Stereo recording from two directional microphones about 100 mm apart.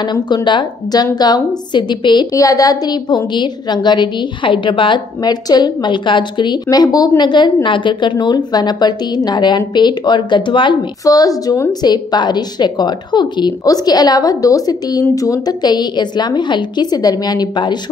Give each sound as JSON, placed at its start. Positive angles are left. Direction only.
{"t": 0.0, "sound": "a woman's voice", "side_deg": 45}
{"t": 2.3, "sound": "a woman's voice", "side_deg": 35}
{"t": 11.1, "sound": "a woman's voice", "side_deg": 40}
{"t": 11.8, "sound": "a woman's voice", "side_deg": 45}